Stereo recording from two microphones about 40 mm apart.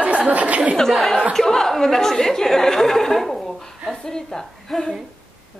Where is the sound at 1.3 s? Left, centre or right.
Centre.